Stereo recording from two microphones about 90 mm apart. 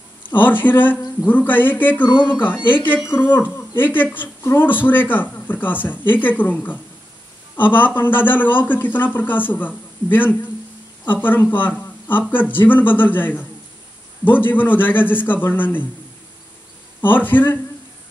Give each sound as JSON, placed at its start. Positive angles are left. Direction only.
{"t": 0.2, "sound": "speech", "side_deg": 20}
{"t": 17.0, "sound": "speech", "side_deg": 20}